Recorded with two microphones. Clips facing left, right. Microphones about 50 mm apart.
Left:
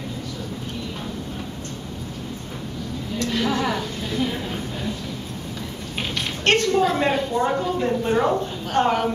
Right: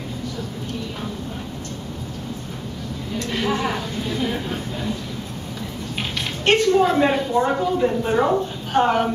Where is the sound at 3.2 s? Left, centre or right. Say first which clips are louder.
Even; right.